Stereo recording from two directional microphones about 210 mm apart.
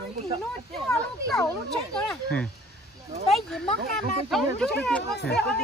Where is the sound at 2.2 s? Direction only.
5° left (ahead or behind).